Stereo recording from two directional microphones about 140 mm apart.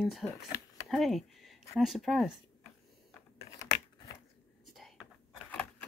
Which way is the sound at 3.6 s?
25° left (ahead or behind).